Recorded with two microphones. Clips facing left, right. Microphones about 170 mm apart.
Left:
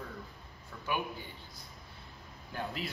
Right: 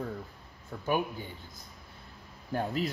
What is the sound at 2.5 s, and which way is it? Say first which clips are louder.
Speech: right 7 dB; 45° right (ahead or behind).